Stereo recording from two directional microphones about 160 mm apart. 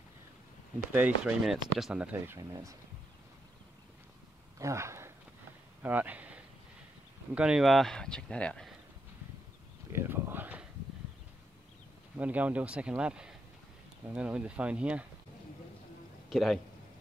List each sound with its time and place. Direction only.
0.9 s speech: 10° right (ahead or behind)
4.6 s speech: 20° right (ahead or behind)
5.8 s a sound: 10° right (ahead or behind)
7.3 s speech: 5° right (ahead or behind)
9.9 s speech: 15° right (ahead or behind)
12.2 s speech: 10° right (ahead or behind)
16.3 s speech: centre (ahead or behind)